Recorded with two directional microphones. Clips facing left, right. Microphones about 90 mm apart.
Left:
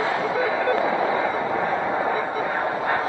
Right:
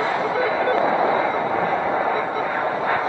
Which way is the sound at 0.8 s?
15° right (ahead or behind).